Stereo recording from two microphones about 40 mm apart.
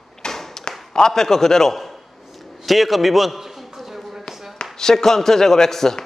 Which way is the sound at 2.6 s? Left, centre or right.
Centre.